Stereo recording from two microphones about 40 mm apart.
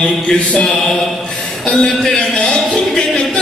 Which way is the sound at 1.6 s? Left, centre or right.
Centre.